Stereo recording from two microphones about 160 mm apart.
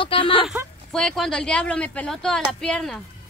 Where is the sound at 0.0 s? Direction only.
35° left (ahead or behind).